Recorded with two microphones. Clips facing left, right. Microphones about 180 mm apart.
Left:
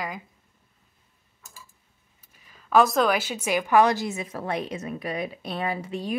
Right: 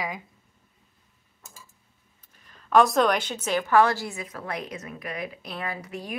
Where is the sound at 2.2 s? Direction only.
5° left (ahead or behind).